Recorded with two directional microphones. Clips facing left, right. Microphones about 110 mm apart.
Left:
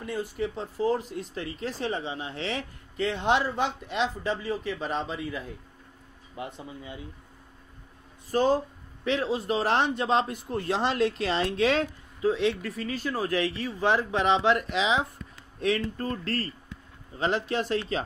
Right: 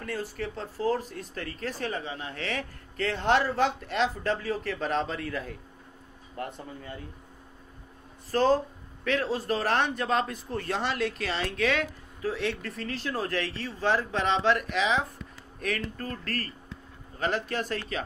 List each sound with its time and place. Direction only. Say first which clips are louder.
0.0 s a man's voice: left 3 dB; 20° left (ahead or behind)
3.1 s speech: right 1 dB; 10° left (ahead or behind)
8.3 s a man's voice: even; 15° left (ahead or behind)
12.2 s a man's voice: left 5 dB; 20° left (ahead or behind)